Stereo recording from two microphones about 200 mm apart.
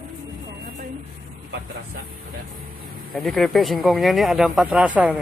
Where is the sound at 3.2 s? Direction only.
Centre (ahead or behind).